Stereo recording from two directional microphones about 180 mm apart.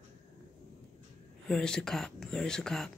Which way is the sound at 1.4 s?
5° left (ahead or behind).